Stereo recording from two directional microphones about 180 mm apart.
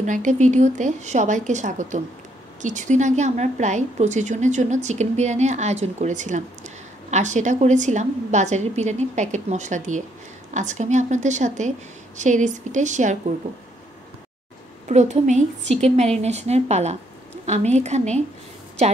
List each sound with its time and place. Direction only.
0.0 s a woman's voice: 40° right (ahead or behind)
14.9 s a woman's voice: 40° right (ahead or behind)